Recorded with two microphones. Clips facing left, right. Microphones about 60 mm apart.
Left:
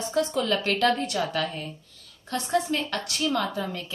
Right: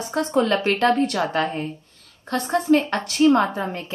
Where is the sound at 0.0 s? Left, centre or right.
Right.